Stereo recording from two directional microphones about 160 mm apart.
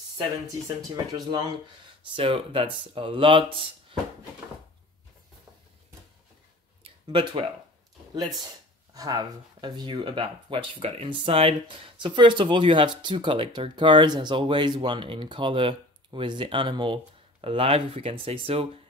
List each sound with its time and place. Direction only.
0.9 s speech: 25° right (ahead or behind)
2.1 s speech: 35° right (ahead or behind)
6.8 s a sound: 35° right (ahead or behind)
8.9 s speech: 25° right (ahead or behind)